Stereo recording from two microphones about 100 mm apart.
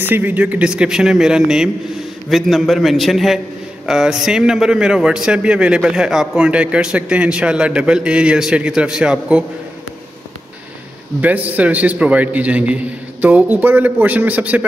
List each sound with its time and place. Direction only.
0.0 s a man's voice: 20° right (ahead or behind)
11.1 s a man's voice: 15° right (ahead or behind)